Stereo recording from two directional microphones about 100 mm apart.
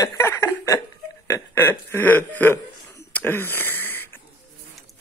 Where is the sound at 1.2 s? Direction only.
30° left (ahead or behind).